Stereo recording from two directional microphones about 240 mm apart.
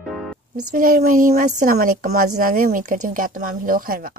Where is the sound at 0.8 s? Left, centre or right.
Right.